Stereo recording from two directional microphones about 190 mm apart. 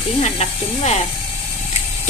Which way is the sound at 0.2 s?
35° left (ahead or behind).